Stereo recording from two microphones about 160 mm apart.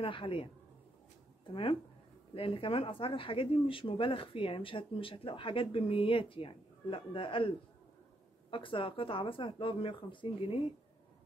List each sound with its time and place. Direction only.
0.0 s speech: 30° left (ahead or behind)
1.5 s speech: 35° left (ahead or behind)